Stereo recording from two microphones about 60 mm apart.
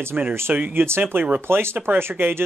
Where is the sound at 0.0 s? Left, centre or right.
Right.